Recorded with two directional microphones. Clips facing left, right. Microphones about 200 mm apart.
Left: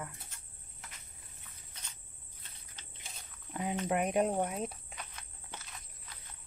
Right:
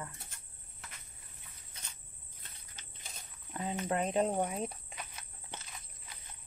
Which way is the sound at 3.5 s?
10° left (ahead or behind).